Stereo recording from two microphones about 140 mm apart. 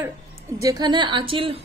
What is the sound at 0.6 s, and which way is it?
A woman's voice, 25° right (ahead or behind).